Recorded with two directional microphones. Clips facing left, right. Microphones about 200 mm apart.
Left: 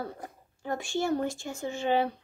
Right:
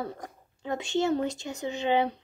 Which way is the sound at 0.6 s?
20° right (ahead or behind).